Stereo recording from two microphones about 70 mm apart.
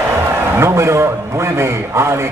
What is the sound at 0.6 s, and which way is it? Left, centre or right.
A man's voice, right.